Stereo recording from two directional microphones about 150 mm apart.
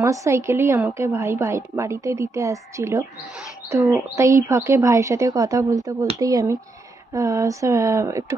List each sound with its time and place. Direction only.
0.0 s a woman's voice: 20° right (ahead or behind)
4.1 s a woman's voice: 20° right (ahead or behind)